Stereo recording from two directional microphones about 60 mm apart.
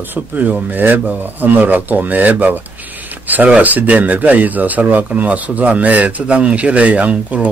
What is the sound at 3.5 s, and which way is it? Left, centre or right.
Speech, right.